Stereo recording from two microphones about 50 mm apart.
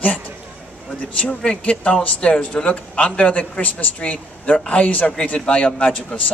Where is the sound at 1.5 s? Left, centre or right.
Left.